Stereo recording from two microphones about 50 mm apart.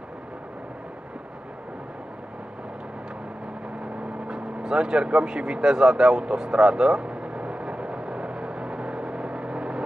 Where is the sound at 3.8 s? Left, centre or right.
Centre.